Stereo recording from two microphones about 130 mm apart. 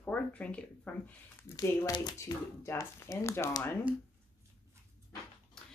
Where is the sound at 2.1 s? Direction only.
20° left (ahead or behind).